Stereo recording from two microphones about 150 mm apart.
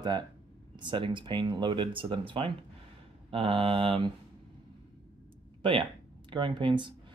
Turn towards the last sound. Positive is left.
turn(degrees=-30)  # may be behind; listen again after turning